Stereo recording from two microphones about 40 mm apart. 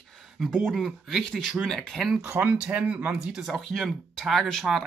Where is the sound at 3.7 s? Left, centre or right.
Centre.